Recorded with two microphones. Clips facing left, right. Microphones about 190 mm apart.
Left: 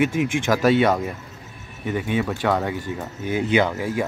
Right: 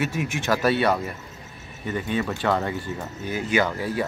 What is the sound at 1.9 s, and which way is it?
Speech, 10° left (ahead or behind).